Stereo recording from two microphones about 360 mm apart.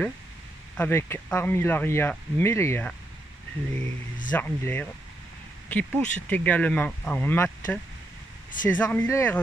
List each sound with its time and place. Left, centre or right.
0.7 s speech: centre
4.3 s speech: centre